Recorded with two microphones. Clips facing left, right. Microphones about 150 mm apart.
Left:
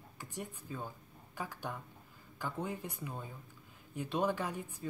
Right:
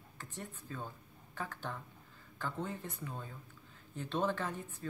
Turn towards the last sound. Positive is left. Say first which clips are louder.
# left 1 dB
turn(degrees=10)  # may be behind; listen again after turning